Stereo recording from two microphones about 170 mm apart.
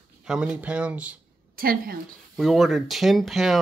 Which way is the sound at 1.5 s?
60° right (ahead or behind).